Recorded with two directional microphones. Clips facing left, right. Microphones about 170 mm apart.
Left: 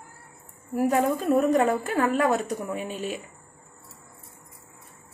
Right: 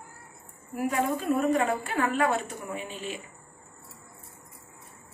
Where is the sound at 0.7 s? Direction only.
40° left (ahead or behind).